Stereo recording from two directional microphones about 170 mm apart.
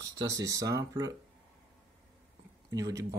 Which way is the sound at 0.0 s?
20° right (ahead or behind).